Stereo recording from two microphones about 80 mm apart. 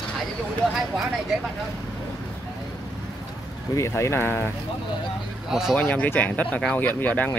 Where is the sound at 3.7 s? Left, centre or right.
Left.